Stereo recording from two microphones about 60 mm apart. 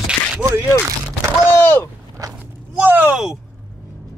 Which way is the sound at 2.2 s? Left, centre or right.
Right.